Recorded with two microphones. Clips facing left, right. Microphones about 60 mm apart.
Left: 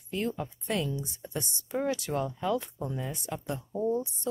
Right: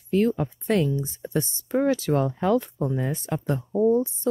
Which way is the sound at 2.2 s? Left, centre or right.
Right.